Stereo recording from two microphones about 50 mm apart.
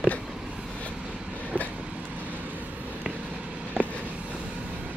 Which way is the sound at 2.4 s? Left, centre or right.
Right.